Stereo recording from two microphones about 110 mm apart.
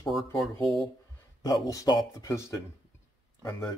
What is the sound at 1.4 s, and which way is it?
Speech, 35° left (ahead or behind).